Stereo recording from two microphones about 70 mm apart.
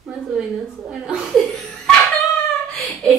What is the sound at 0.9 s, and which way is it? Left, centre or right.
Speech, centre.